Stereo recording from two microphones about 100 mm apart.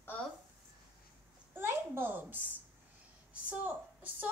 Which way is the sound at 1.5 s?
20° right (ahead or behind).